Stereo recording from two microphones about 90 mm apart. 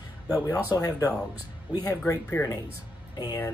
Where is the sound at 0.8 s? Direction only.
35° left (ahead or behind).